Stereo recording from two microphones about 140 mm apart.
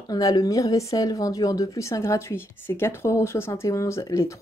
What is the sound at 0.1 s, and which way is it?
Speech, 25° left (ahead or behind).